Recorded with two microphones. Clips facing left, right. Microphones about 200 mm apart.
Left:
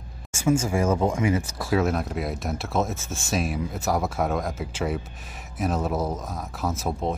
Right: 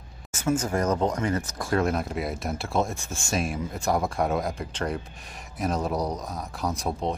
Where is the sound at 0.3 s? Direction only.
10° left (ahead or behind).